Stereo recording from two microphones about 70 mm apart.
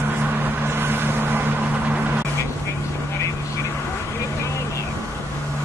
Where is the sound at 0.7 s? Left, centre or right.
Right.